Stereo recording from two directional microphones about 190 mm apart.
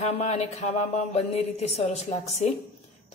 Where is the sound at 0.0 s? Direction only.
35° left (ahead or behind).